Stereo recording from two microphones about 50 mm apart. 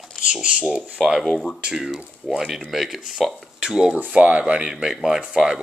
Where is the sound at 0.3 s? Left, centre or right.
Centre.